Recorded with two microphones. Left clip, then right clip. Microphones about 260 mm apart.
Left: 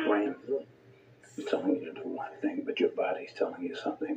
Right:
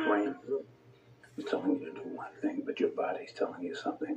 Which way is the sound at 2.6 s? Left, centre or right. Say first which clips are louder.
Left 3 dB; centre.